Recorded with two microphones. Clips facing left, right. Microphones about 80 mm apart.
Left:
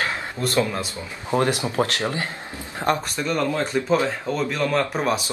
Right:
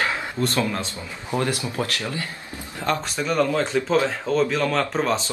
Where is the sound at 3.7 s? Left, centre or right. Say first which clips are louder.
Right 1 dB; centre.